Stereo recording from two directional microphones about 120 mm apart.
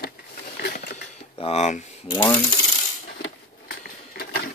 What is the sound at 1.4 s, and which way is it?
Speech, 65° left (ahead or behind).